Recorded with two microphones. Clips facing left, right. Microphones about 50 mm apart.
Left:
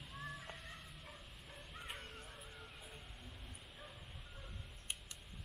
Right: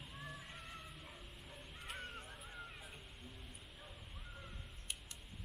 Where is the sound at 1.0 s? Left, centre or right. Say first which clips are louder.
Right 1 dB; centre.